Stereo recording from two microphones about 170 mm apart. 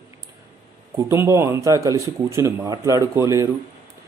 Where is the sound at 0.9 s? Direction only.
15° right (ahead or behind).